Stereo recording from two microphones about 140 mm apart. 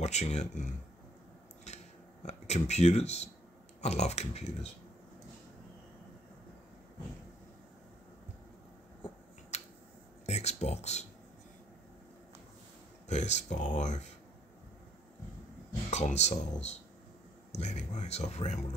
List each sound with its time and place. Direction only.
0.0 s speech: 55° left (ahead or behind)
1.7 s scissors: 50° left (ahead or behind)
2.2 s speech: 50° left (ahead or behind)
9.5 s finger snapping: 55° left (ahead or behind)
10.2 s speech: 50° left (ahead or behind)
13.1 s speech: 55° left (ahead or behind)
15.9 s speech: 55° left (ahead or behind)